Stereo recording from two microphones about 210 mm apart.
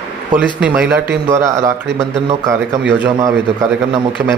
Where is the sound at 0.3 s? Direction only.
5° right (ahead or behind).